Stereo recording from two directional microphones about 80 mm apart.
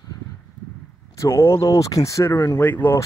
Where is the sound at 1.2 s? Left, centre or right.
Left.